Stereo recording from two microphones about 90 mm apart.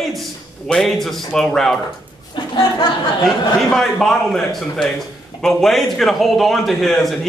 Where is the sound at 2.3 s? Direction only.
65° left (ahead or behind).